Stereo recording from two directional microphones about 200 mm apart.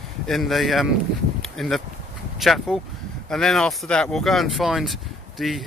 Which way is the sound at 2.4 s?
Centre (ahead or behind).